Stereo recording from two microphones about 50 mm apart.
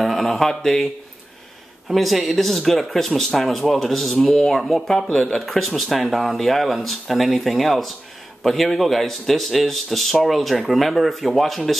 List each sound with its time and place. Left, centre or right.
0.0 s speech: centre
1.9 s speech: centre
5.4 s speech: centre